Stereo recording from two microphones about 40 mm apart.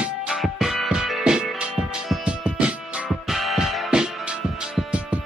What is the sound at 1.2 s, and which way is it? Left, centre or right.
Music, centre.